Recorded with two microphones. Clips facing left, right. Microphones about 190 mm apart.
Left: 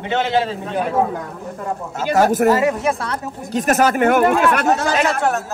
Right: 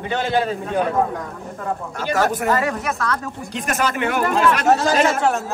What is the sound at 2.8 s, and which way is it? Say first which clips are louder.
Speech: left 3 dB; 30° left (ahead or behind).